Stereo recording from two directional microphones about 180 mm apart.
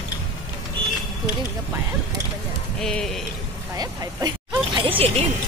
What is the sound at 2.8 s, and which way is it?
Speech, 5° left (ahead or behind).